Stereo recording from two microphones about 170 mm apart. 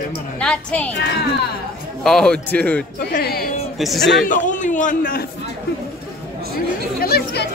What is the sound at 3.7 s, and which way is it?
Speech, centre (ahead or behind).